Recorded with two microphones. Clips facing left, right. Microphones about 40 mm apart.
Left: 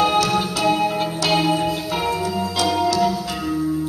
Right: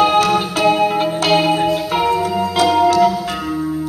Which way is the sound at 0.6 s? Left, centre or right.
Right.